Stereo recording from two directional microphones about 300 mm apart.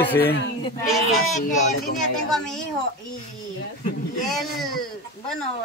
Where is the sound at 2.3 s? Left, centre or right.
Centre.